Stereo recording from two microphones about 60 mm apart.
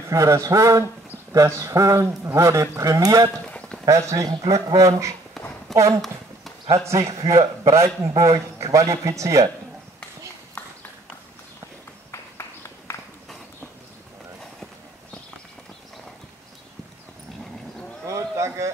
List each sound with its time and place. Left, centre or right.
0.1 s a man's voice: right
1.3 s a man's voice: right
2.8 s speech: right
3.4 s a sound: centre
3.8 s a man's voice: right
5.4 s a sound: centre
5.9 s clip-clop: centre
6.9 s a man's voice: right
12.1 s run: left
18.0 s a sound: right